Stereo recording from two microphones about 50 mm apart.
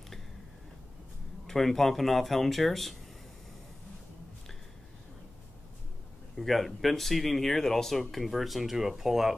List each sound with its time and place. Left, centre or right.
1.5 s speech: centre
6.3 s speech: centre